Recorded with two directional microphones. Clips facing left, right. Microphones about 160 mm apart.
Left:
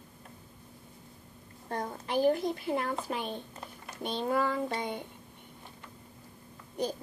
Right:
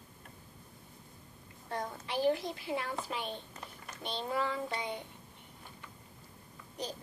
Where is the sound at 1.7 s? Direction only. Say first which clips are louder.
Left 4 dB; 50° left (ahead or behind).